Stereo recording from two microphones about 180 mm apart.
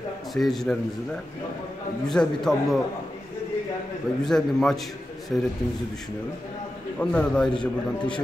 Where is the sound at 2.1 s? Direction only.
Centre (ahead or behind).